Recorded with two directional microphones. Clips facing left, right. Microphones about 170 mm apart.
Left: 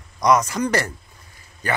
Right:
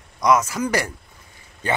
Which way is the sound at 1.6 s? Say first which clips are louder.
Right 1 dB; 25° right (ahead or behind).